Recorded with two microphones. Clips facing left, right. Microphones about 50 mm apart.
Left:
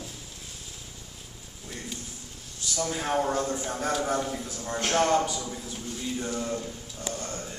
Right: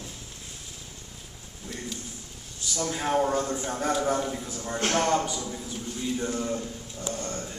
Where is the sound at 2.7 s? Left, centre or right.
Centre.